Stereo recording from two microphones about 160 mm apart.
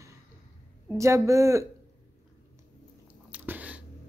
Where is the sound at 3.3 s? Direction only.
10° right (ahead or behind).